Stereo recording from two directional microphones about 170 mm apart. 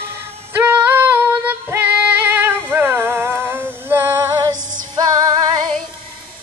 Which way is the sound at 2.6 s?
10° right (ahead or behind).